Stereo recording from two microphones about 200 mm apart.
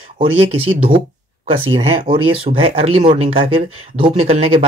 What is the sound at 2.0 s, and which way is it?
Speech, 25° right (ahead or behind).